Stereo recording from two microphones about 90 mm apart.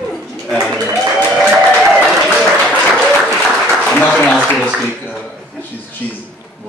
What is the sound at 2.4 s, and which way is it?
Applause, 5° left (ahead or behind).